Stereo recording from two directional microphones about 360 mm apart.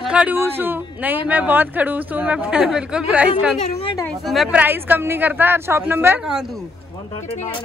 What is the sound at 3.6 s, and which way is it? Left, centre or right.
Speech, centre.